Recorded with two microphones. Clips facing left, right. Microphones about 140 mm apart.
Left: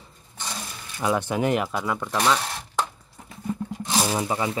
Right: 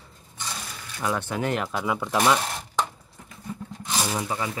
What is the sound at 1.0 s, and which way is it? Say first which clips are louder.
Speech: left 4 dB; 15° left (ahead or behind).